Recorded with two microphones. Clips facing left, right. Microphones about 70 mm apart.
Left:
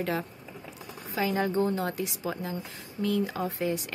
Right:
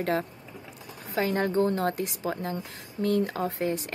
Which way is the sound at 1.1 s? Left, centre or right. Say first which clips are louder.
Right 2 dB; right.